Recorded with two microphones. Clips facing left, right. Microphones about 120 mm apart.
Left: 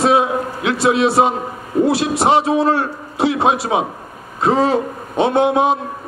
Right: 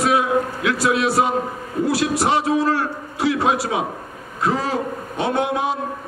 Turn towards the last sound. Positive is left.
turn(degrees=20)  # may be behind; listen again after turning